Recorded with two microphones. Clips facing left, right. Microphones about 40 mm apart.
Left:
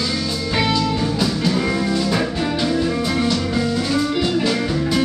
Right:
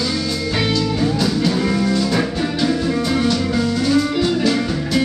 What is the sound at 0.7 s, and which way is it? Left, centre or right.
Music, centre.